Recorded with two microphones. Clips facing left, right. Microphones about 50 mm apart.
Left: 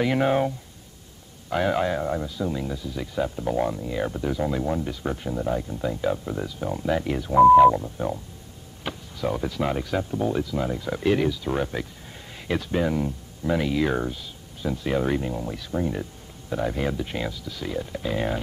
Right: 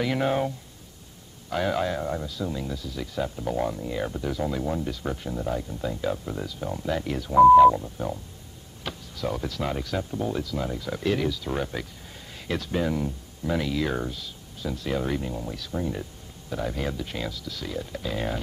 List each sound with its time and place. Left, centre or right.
0.0 s speech: centre
1.5 s speech: centre